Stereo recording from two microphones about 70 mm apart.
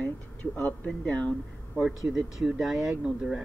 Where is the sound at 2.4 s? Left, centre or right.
Centre.